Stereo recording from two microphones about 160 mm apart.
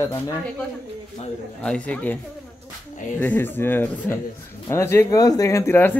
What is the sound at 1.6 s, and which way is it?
Speech, 10° left (ahead or behind).